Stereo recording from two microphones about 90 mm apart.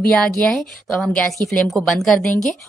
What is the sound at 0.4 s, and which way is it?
A woman's voice, 15° left (ahead or behind).